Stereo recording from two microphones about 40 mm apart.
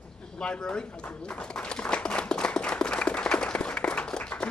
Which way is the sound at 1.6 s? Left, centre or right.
Left.